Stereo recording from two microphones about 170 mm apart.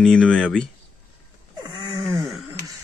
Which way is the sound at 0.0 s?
5° left (ahead or behind).